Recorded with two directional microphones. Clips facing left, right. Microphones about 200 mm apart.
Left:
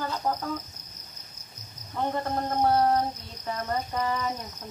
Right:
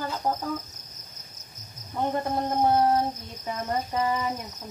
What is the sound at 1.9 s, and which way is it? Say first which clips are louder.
Speech: right 2 dB; 15° right (ahead or behind).